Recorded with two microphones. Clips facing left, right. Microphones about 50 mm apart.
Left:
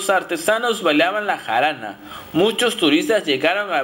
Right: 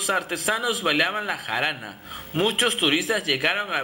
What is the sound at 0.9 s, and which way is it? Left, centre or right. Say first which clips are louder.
Speech: left 6 dB; centre.